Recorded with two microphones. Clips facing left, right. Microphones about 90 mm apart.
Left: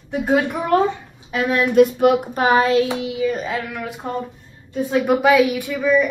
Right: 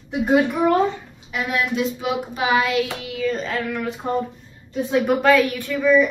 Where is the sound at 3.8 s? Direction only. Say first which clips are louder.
Right 3 dB; centre (ahead or behind).